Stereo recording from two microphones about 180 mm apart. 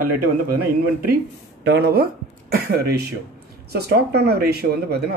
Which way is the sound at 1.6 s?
65° right (ahead or behind).